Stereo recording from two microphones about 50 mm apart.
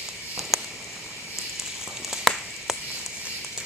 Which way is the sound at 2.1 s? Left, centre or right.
Centre.